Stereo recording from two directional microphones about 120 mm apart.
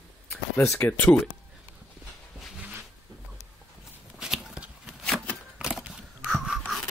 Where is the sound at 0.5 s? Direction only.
25° left (ahead or behind).